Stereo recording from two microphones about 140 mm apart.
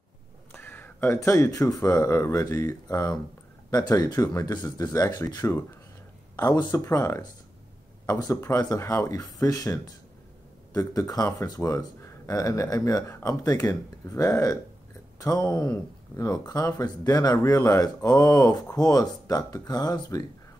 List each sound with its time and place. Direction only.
0.5 s speech: 15° left (ahead or behind)